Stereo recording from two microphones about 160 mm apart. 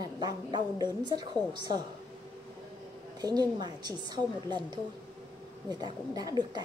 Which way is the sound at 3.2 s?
25° right (ahead or behind).